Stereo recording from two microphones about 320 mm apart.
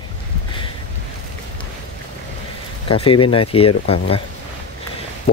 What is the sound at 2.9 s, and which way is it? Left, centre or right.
Speech, centre.